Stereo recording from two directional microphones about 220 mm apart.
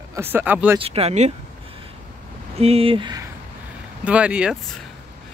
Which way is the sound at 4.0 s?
5° right (ahead or behind).